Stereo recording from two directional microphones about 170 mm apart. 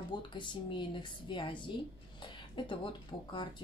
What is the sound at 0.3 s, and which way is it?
Speech, 30° left (ahead or behind).